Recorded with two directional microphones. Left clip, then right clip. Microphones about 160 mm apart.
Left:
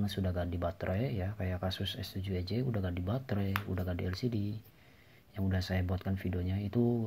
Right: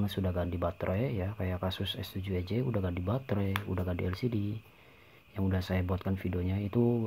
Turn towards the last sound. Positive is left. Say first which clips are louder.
# right 3 dB
turn(degrees=-30)  # may be behind; listen again after turning